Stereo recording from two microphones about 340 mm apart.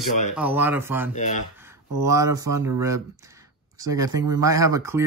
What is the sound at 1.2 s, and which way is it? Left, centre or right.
Speech, left.